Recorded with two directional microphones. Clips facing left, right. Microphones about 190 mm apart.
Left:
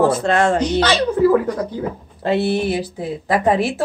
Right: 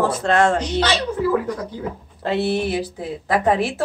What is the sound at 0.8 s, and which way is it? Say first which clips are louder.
Speech: left 5 dB; 45° left (ahead or behind).